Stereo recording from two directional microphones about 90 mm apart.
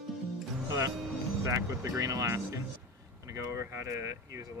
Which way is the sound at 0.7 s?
40° right (ahead or behind).